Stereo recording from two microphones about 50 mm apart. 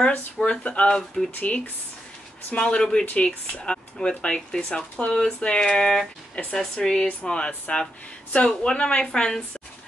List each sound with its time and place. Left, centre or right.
0.4 s speech: left
3.6 s a sound: centre
4.2 s speech: centre